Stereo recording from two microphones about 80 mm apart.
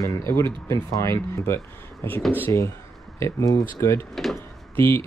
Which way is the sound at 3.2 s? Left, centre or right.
Left.